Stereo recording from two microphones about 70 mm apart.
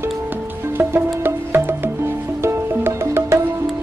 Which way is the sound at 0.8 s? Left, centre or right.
Right.